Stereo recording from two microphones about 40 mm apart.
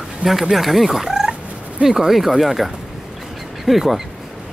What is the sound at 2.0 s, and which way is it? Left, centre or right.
Speech, centre.